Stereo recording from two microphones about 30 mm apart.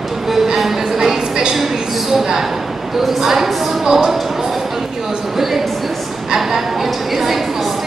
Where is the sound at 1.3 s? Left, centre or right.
Right.